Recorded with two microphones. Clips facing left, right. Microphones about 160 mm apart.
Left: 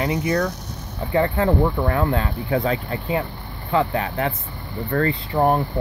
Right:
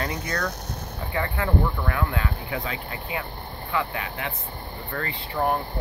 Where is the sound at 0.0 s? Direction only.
20° left (ahead or behind).